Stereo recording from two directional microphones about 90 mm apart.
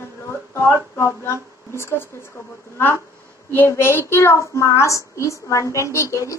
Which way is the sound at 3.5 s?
25° left (ahead or behind).